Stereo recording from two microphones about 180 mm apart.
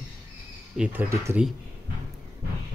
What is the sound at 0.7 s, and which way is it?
Speech, 10° right (ahead or behind).